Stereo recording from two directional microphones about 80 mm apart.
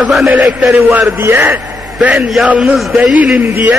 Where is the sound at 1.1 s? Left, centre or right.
Right.